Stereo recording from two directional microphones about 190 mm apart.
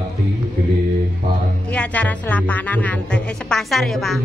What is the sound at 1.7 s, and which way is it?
Music, 5° left (ahead or behind).